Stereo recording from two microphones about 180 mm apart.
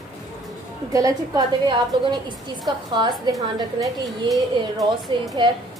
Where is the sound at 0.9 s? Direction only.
20° right (ahead or behind).